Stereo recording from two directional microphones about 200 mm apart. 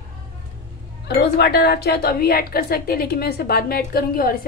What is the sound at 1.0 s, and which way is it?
A woman's voice, 55° left (ahead or behind).